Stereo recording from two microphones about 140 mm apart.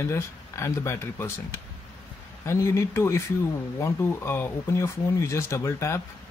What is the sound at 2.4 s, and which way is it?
Speech, 20° left (ahead or behind).